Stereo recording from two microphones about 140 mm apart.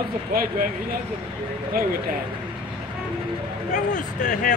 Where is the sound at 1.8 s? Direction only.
90° right.